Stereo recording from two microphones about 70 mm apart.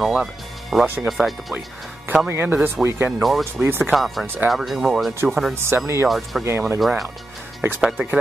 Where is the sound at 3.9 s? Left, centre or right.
Centre.